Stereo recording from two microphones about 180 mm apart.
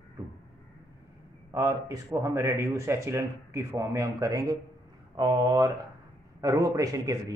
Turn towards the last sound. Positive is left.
turn(degrees=-20)  # may be behind; listen again after turning